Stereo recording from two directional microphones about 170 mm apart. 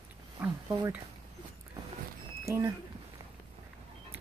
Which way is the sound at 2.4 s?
15° right (ahead or behind).